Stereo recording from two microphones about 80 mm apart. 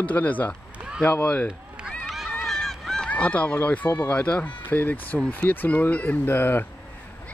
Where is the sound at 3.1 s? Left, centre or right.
Centre.